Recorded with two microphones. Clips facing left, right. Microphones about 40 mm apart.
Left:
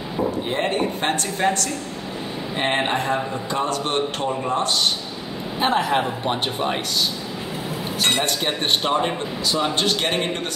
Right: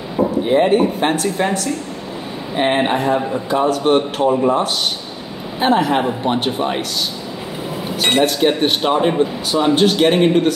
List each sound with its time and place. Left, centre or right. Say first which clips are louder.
0.5 s a man's voice: right 9 dB; centre
5.6 s a man's voice: right 5 dB; centre
8.2 s a man's voice: right 8 dB; centre